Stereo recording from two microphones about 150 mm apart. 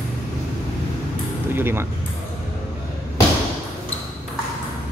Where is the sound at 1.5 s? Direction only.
15° right (ahead or behind).